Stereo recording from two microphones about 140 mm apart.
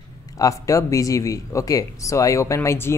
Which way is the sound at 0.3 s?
25° left (ahead or behind).